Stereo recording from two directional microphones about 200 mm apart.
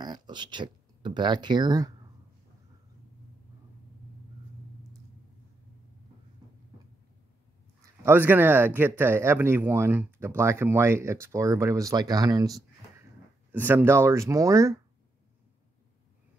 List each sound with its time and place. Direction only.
0.0 s speech: 20° right (ahead or behind)
8.0 s speech: 10° right (ahead or behind)